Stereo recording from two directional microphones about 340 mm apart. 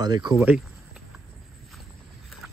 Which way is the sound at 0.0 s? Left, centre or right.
Centre.